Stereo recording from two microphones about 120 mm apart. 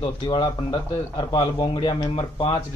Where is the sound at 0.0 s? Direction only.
40° left (ahead or behind).